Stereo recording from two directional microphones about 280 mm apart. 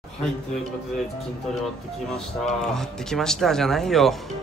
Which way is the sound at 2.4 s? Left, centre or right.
Centre.